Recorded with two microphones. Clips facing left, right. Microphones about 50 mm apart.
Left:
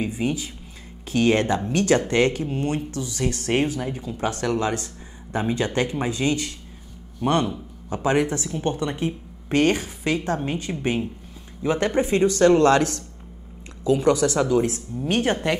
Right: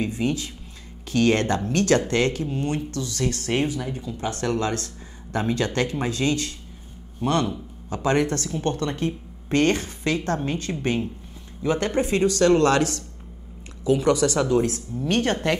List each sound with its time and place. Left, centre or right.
0.0 s speech: centre
7.9 s speech: centre
11.6 s speech: left
15.0 s speech: centre